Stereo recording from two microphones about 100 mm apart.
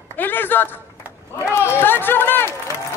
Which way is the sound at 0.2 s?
20° left (ahead or behind).